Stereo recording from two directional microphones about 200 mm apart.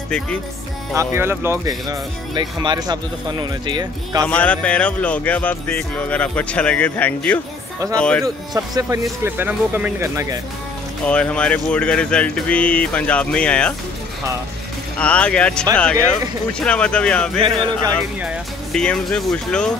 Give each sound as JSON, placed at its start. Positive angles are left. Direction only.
{"t": 0.9, "sound": "speech", "side_deg": -10}
{"t": 4.3, "sound": "speech", "side_deg": 5}
{"t": 8.5, "sound": "speech", "side_deg": -15}
{"t": 11.1, "sound": "speech", "side_deg": 5}
{"t": 15.0, "sound": "speech", "side_deg": 5}